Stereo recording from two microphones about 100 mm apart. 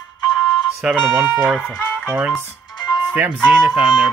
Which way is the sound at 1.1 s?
20° right (ahead or behind).